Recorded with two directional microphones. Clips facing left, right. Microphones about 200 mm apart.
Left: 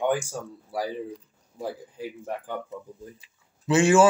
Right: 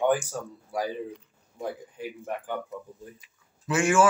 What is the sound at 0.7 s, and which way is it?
Speech, 35° left (ahead or behind).